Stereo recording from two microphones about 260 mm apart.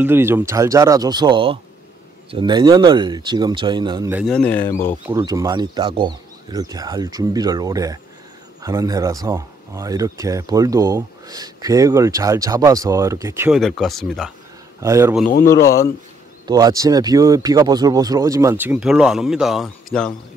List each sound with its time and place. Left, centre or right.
0.0 s speech: centre
4.3 s speech: centre
5.0 s speech: centre
14.8 s speech: centre
15.4 s speech: centre
16.4 s speech: centre